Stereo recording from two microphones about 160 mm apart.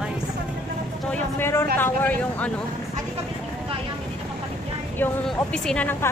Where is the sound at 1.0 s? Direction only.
10° left (ahead or behind).